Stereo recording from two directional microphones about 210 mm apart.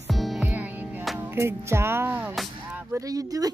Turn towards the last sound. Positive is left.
turn(degrees=-15)  # may be behind; listen again after turning